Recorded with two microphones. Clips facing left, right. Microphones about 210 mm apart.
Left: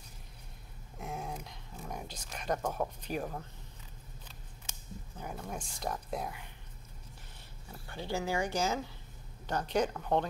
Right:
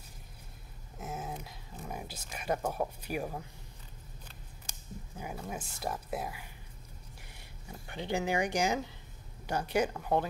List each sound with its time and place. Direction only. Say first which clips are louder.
0.9 s dog: even; centre (ahead or behind)
5.1 s speech: right 1 dB; 5° right (ahead or behind)
7.8 s speech: right 2 dB; 20° right (ahead or behind)